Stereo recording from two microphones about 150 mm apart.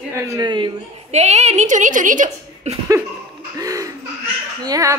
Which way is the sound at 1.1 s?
50° right (ahead or behind).